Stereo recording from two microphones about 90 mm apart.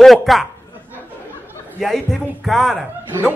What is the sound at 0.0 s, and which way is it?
Speech, centre (ahead or behind).